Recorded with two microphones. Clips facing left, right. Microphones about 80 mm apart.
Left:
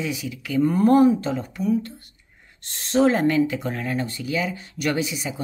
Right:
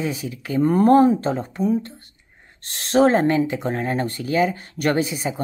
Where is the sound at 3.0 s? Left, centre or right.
Right.